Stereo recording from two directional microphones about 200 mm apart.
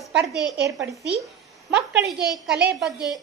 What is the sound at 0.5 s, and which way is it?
Speech, 60° right (ahead or behind).